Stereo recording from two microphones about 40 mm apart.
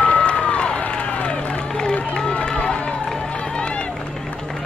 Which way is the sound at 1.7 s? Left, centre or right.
Centre.